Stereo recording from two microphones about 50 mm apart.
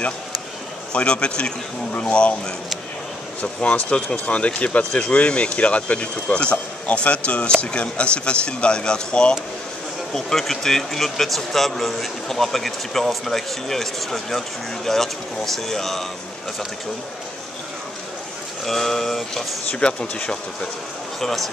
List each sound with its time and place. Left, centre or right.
0.9 s speech: left
3.6 s speech: left
10.1 s speech: centre
18.7 s speech: centre
19.7 s speech: left
21.2 s speech: centre